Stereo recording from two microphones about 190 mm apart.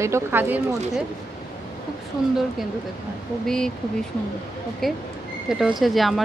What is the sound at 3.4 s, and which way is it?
Speech, 5° left (ahead or behind).